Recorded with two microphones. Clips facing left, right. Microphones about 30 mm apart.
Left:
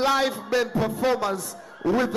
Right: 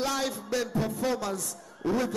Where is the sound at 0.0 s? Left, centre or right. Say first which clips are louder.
Left 8 dB; left.